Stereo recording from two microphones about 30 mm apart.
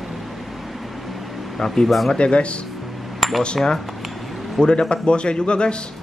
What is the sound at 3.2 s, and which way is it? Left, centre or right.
Cutlery, centre.